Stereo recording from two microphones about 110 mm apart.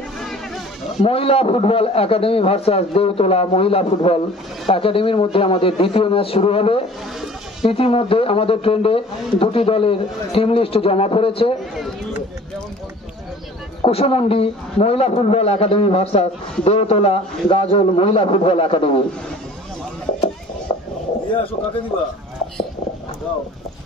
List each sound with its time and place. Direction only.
1.0 s a man's voice: 60° left (ahead or behind)
13.8 s a man's voice: 65° left (ahead or behind)
20.7 s a sound: 60° left (ahead or behind)
21.3 s a man's voice: 55° left (ahead or behind)